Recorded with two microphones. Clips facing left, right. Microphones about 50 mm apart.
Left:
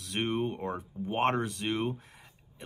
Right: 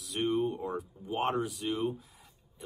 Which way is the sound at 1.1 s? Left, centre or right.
Left.